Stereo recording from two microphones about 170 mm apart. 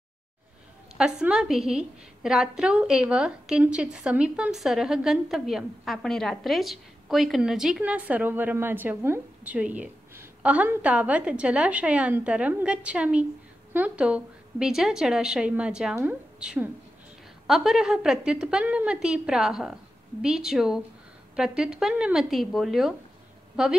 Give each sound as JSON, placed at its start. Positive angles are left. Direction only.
{"t": 0.9, "sound": "a woman's voice", "side_deg": -5}